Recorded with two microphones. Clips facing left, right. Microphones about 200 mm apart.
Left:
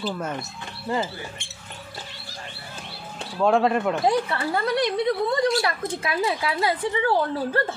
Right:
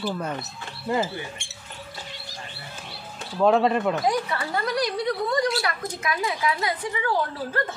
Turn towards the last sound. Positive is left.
turn(degrees=30)  # may be behind; listen again after turning